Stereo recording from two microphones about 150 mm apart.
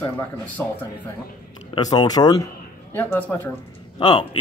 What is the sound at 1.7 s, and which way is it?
Speech, 25° left (ahead or behind).